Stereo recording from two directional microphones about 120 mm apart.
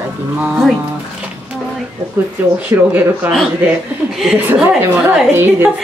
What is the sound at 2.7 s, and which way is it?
Speech, 15° right (ahead or behind).